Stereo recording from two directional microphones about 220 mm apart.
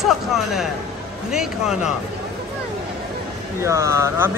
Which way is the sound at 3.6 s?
15° right (ahead or behind).